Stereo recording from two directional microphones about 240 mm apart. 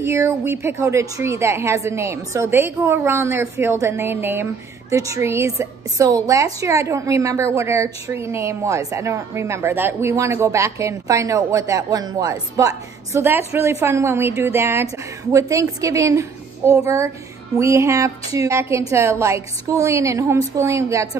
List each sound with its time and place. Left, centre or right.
0.0 s a woman's voice: centre